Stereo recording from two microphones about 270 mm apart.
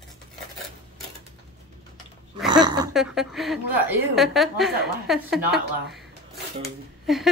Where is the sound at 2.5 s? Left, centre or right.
Centre.